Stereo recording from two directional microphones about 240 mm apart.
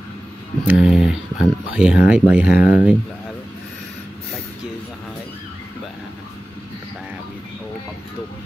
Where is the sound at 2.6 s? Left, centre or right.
Centre.